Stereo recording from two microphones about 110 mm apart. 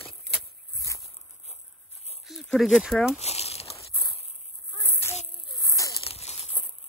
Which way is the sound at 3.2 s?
75° left (ahead or behind).